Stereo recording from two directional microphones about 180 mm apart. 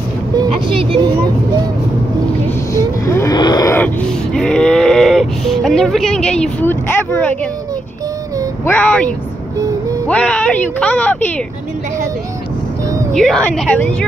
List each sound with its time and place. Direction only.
0.4 s music: 30° right (ahead or behind)
3.1 s a sound: 15° left (ahead or behind)
8.6 s speech: 10° left (ahead or behind)
10.0 s speech: 5° left (ahead or behind)
13.1 s a woman's voice: centre (ahead or behind)